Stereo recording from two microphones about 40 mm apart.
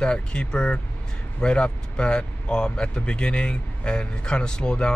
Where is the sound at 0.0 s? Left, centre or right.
Left.